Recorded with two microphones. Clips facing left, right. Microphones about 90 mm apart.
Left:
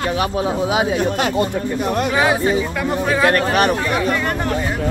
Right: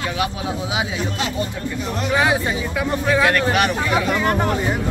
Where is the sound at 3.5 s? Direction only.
40° left (ahead or behind).